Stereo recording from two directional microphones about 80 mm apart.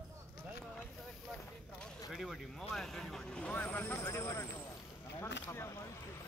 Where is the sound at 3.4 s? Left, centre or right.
Centre.